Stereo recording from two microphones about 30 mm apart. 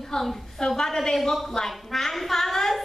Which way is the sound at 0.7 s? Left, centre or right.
Centre.